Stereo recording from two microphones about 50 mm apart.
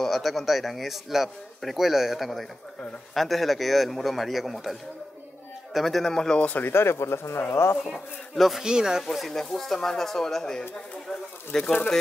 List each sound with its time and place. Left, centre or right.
0.0 s a man's voice: centre
6.3 s speech: left
6.6 s speech: left
7.9 s a man's voice: centre
8.6 s speech: centre
9.0 s speech: centre